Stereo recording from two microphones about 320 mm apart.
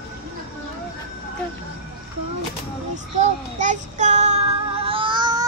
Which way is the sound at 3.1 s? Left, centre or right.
Right.